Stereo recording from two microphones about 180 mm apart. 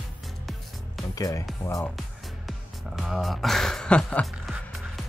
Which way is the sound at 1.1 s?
20° left (ahead or behind).